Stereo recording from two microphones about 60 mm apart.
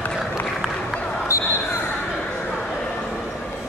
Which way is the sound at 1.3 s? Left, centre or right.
Left.